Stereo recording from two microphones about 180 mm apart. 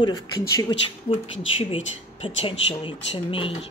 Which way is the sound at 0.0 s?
25° left (ahead or behind).